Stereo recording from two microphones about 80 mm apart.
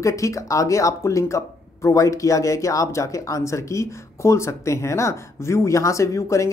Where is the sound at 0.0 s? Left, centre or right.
Left.